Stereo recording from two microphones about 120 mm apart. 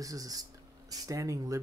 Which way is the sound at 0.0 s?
30° right (ahead or behind).